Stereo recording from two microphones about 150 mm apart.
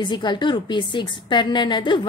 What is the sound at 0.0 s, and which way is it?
A woman's voice, 30° left (ahead or behind).